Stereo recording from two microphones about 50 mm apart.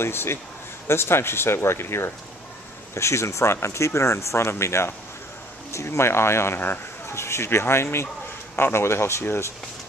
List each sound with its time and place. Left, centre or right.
0.0 s speech: left
2.9 s speech: left
7.1 s speech: left